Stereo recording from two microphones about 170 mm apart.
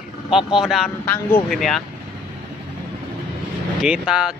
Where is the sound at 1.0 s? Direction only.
10° left (ahead or behind).